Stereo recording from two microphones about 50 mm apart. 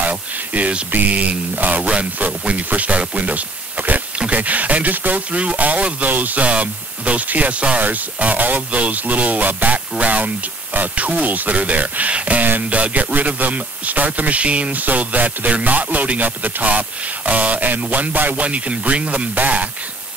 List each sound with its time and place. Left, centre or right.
0.0 s speech: right